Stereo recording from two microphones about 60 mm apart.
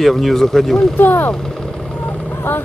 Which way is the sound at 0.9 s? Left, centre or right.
Left.